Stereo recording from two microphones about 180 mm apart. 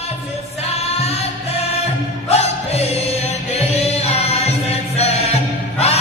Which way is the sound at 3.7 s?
35° left (ahead or behind).